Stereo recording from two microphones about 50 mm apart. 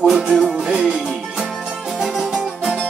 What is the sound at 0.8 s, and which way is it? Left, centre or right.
Music, centre.